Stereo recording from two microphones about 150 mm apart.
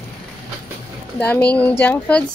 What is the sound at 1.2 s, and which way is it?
Speech, 10° left (ahead or behind).